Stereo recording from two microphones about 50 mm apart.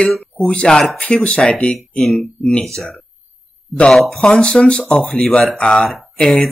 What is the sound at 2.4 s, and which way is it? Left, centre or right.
Speech, centre.